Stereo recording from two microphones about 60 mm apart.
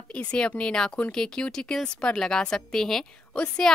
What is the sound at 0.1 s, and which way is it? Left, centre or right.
A woman's voice, centre.